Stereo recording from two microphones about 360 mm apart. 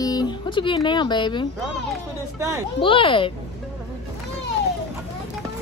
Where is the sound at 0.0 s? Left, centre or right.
Centre.